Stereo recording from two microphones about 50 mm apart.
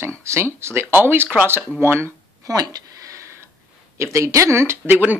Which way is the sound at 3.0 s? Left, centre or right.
Right.